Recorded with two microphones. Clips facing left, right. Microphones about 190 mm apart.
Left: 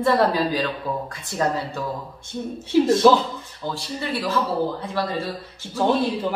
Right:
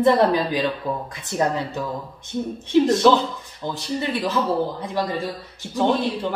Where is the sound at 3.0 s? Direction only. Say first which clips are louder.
Left 2 dB; 10° left (ahead or behind).